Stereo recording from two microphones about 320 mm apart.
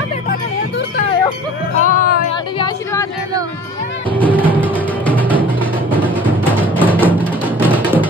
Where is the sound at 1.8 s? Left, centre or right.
Left.